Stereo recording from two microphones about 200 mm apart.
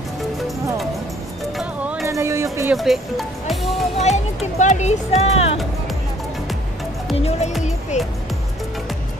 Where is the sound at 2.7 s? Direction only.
Centre (ahead or behind).